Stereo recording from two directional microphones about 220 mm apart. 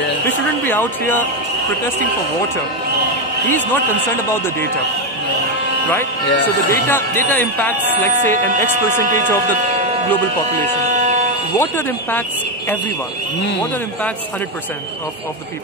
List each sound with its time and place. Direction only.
0.2 s speech: 10° left (ahead or behind)
3.4 s speech: 10° left (ahead or behind)
6.4 s speech: 10° left (ahead or behind)
8.1 s speech: 35° right (ahead or behind)
10.9 s a sound: 35° right (ahead or behind)
11.5 s speech: 10° left (ahead or behind)